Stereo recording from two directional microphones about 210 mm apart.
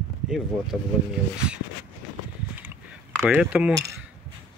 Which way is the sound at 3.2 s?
5° right (ahead or behind).